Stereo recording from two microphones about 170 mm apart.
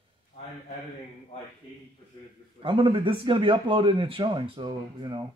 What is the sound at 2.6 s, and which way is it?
Speech, 30° right (ahead or behind).